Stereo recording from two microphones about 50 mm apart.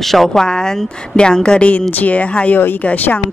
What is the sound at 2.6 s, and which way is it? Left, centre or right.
Speech, left.